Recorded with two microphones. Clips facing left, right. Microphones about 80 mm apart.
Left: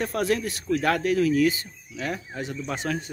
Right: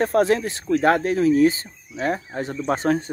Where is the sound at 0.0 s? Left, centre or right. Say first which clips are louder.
Right 6 dB; right.